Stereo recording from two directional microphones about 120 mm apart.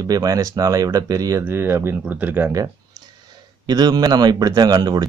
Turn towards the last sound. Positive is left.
turn(degrees=-35)  # may be behind; listen again after turning